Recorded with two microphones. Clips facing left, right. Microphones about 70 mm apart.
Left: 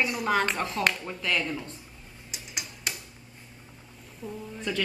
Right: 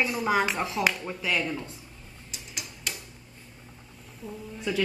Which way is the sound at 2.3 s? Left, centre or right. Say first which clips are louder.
Left 1 dB; centre.